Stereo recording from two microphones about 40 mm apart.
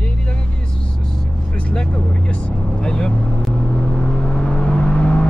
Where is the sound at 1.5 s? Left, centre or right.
Left.